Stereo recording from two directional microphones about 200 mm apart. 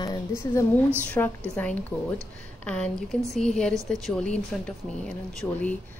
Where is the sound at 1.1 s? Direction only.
10° left (ahead or behind).